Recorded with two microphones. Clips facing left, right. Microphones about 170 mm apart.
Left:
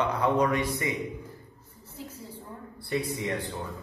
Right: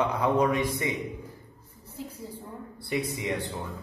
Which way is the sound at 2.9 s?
20° right (ahead or behind).